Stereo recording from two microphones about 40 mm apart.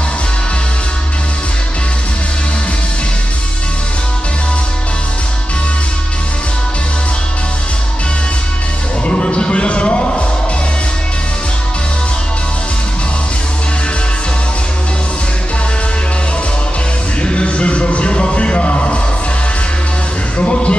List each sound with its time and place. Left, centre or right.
9.0 s music: left
17.2 s music: left
20.3 s music: left